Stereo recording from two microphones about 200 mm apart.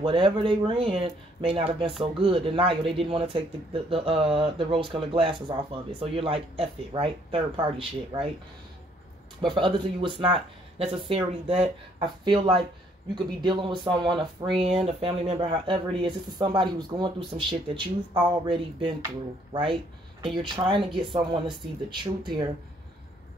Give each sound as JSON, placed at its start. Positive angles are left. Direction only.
{"t": 0.0, "sound": "speech", "side_deg": -25}
{"t": 9.4, "sound": "speech", "side_deg": -25}